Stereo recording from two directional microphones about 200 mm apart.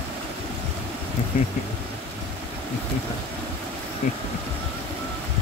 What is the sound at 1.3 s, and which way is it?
Speech, 40° left (ahead or behind).